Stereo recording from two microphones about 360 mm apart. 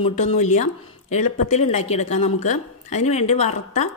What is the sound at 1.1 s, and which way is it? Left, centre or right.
Speech, left.